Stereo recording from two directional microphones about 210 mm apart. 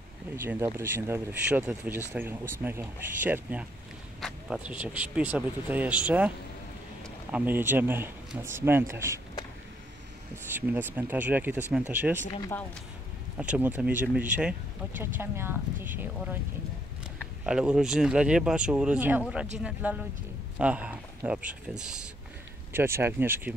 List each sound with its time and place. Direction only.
0.4 s speech: 10° right (ahead or behind)
10.3 s speech: 10° right (ahead or behind)
12.3 s speech: 20° left (ahead or behind)
13.4 s speech: 10° right (ahead or behind)
17.5 s speech: 5° right (ahead or behind)
22.7 s speech: 10° right (ahead or behind)